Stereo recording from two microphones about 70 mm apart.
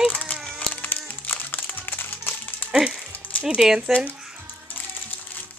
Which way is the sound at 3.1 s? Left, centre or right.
Left.